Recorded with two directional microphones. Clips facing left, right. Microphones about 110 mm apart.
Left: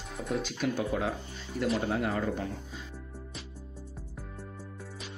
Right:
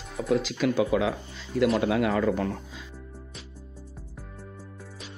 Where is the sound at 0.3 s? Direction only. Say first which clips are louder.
Right 7 dB; 90° right.